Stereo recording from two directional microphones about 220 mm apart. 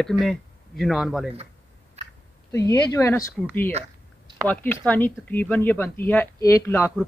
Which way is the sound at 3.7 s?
30° right (ahead or behind).